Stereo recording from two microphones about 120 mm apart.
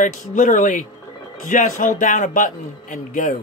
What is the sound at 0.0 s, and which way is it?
A man's voice, 90° left.